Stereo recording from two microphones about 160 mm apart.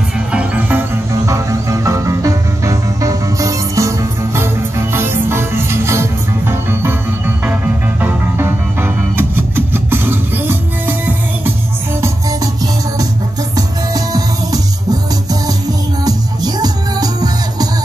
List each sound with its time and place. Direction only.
0.3 s music: 10° right (ahead or behind)
13.6 s music: 25° right (ahead or behind)